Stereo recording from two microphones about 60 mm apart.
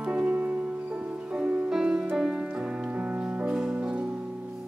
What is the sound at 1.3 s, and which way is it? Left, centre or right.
Music, centre.